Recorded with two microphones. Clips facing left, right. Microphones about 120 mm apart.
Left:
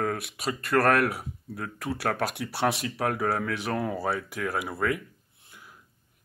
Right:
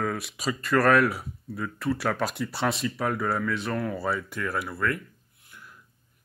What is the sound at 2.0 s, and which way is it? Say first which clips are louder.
Speech: right 1 dB; 55° left (ahead or behind).